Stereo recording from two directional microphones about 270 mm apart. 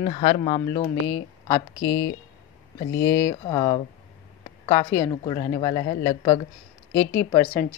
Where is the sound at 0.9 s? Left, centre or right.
Left.